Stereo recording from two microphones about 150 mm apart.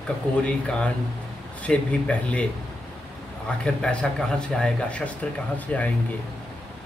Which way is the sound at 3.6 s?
5° left (ahead or behind).